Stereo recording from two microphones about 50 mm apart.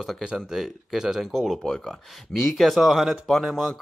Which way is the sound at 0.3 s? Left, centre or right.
Centre.